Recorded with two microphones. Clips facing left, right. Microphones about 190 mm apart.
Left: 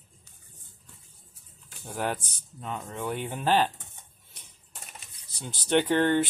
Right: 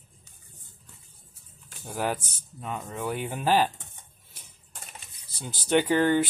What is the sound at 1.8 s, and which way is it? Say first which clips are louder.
Speech: right 1 dB; 5° right (ahead or behind).